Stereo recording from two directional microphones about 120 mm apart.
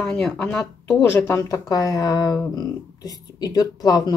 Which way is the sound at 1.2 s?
25° left (ahead or behind).